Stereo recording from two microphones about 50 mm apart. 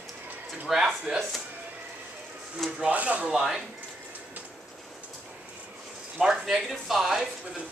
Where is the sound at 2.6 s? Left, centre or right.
Centre.